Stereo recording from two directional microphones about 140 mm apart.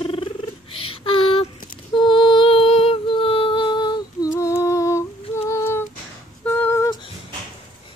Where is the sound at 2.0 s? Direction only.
35° left (ahead or behind).